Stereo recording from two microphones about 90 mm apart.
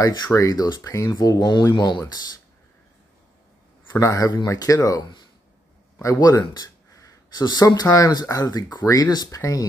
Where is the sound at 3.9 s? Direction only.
35° left (ahead or behind).